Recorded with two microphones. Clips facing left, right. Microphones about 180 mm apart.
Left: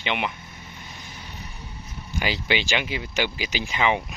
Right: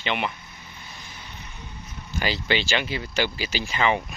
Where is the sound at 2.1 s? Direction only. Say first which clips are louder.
Even; 15° left (ahead or behind).